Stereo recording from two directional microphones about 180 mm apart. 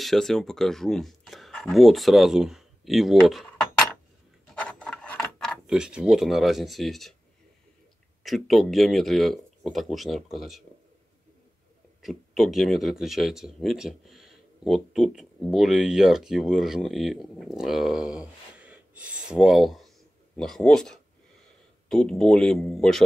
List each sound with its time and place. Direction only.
0.0 s speech: centre (ahead or behind)
4.6 s a sound: 5° left (ahead or behind)
8.2 s speech: centre (ahead or behind)
12.0 s speech: centre (ahead or behind)
18.6 s a sound: 5° right (ahead or behind)
20.3 s speech: 5° left (ahead or behind)